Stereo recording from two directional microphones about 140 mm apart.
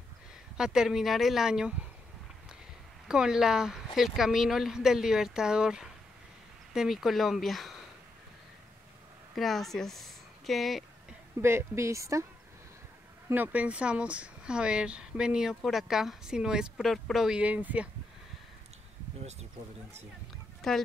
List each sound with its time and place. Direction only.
0.6 s speech: 5° right (ahead or behind)
3.1 s speech: 5° right (ahead or behind)
9.3 s speech: centre (ahead or behind)
11.4 s a woman's voice: 20° right (ahead or behind)
13.3 s speech: 10° right (ahead or behind)
20.6 s speech: centre (ahead or behind)